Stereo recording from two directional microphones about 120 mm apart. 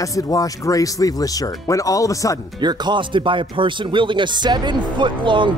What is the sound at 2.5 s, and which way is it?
Speech, 35° right (ahead or behind).